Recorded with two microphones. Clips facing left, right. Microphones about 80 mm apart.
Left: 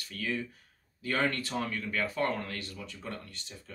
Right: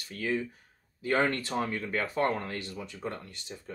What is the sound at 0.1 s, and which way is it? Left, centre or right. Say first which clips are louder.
Speech: right 4 dB; right.